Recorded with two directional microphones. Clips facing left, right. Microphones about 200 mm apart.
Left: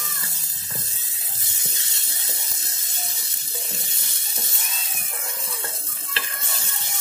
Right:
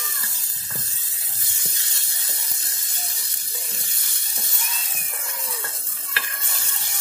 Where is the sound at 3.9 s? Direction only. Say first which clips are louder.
Left 3 dB; 25° left (ahead or behind).